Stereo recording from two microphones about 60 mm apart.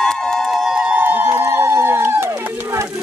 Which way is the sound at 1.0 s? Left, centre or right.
Right.